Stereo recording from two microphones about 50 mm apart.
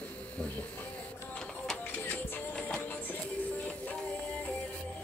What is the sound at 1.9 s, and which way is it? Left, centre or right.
Music, left.